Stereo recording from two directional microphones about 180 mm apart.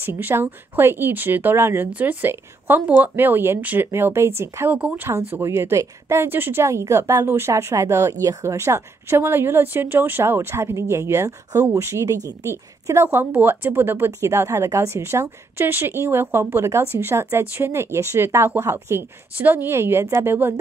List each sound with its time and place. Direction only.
0.0 s speech: 10° right (ahead or behind)